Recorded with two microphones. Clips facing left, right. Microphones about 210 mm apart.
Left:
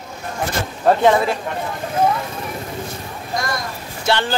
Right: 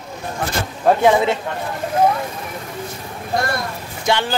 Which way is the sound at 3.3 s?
60° right (ahead or behind).